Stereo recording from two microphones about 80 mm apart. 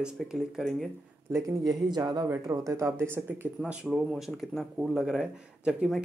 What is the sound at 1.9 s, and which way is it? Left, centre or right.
Speech, right.